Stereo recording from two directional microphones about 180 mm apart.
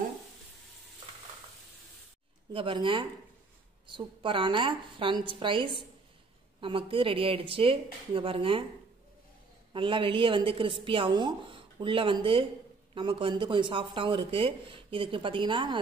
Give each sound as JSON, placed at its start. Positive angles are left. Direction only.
{"t": 2.5, "sound": "speech", "side_deg": -30}
{"t": 9.7, "sound": "speech", "side_deg": -30}